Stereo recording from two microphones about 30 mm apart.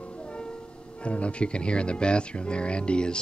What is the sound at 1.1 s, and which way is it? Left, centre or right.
Speech, left.